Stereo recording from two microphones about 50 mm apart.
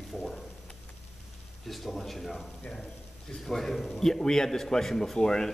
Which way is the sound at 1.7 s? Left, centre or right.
Centre.